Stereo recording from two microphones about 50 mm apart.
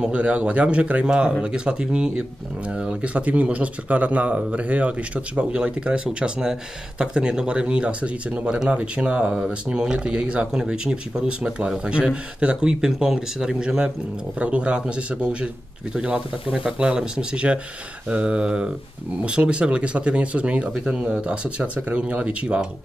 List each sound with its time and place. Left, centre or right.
0.0 s speech: right